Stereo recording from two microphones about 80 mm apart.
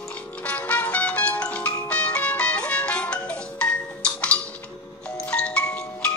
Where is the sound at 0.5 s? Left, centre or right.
Centre.